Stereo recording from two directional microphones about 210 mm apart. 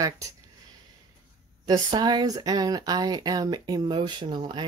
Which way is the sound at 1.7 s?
20° right (ahead or behind).